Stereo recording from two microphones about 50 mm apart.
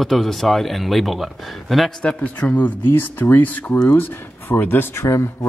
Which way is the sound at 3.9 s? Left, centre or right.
Left.